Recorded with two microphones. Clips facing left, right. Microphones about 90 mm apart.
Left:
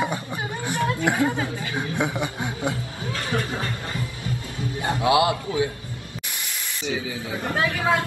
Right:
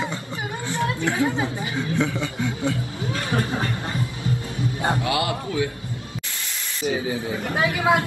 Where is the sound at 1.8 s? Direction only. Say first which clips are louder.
Right 1 dB; 15° left (ahead or behind).